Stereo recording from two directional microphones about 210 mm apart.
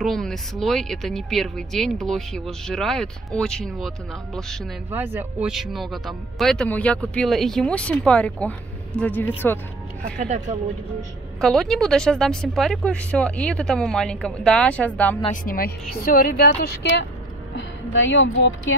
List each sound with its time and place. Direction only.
0.0 s speech: centre (ahead or behind)
4.9 s speech: 10° right (ahead or behind); by 9.3 s 10° left (ahead or behind)
10.1 s speech: 35° right (ahead or behind)
11.4 s speech: centre (ahead or behind)
15.4 s speech: 40° left (ahead or behind)
17.6 s a woman's voice: 60° left (ahead or behind)